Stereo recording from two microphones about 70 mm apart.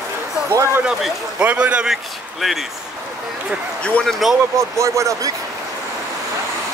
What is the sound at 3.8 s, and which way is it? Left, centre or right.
Speech, centre.